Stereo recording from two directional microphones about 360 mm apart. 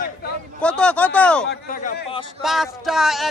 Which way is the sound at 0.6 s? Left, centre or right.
Centre.